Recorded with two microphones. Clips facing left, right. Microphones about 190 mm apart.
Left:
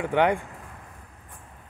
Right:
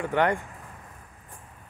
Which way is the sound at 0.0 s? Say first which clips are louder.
Left 2 dB; 15° left (ahead or behind).